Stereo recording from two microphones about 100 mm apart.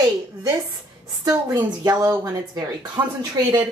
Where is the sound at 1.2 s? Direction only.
35° right (ahead or behind).